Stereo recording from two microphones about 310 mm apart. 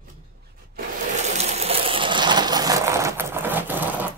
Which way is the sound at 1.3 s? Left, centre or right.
Right.